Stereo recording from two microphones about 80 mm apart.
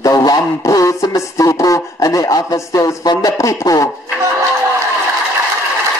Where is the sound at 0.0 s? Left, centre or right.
Left.